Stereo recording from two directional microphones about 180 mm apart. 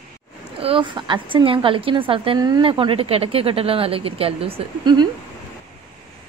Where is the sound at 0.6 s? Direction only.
30° right (ahead or behind).